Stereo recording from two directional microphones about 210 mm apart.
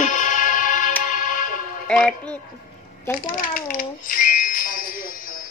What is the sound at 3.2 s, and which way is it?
Speech, 40° left (ahead or behind).